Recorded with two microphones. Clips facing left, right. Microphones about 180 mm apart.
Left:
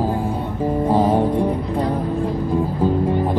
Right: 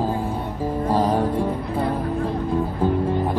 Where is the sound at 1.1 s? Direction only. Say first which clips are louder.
Left 4 dB; 20° left (ahead or behind).